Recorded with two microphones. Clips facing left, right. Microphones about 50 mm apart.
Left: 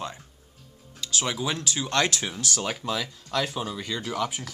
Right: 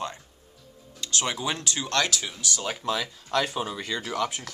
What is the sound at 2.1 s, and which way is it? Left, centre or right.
Speech, left.